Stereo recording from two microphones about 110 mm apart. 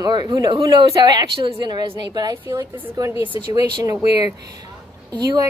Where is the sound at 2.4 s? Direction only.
30° right (ahead or behind).